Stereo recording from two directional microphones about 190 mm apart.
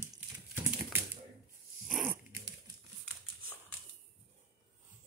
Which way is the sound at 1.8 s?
10° right (ahead or behind).